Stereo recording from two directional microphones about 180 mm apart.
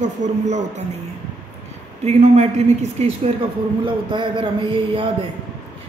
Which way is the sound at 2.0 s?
35° right (ahead or behind).